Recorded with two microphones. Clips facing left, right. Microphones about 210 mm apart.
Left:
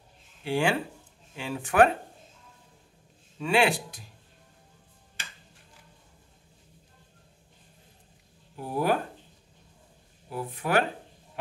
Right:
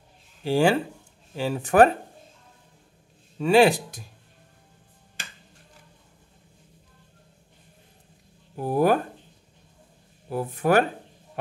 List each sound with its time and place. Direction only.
0.4 s speech: 35° right (ahead or behind)
3.3 s speech: 40° right (ahead or behind)
8.5 s speech: 45° right (ahead or behind)
10.3 s speech: 45° right (ahead or behind)